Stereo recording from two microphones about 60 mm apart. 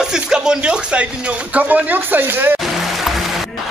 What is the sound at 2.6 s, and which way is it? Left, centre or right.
Music, centre.